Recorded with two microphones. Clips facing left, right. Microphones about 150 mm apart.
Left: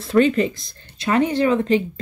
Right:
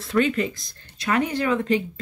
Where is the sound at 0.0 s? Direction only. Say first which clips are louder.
Left 5 dB; 30° left (ahead or behind).